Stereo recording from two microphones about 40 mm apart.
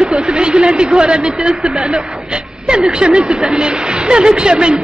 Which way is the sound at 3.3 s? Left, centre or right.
Centre.